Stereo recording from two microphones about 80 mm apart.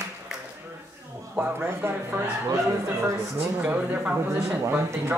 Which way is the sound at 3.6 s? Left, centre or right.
Centre.